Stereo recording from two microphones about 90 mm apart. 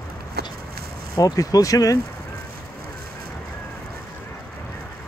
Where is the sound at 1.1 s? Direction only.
40° left (ahead or behind).